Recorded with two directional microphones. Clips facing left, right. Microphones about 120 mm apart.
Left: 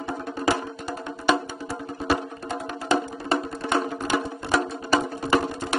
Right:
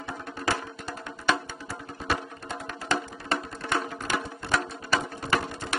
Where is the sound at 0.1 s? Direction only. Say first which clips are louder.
Left 5 dB; 25° left (ahead or behind).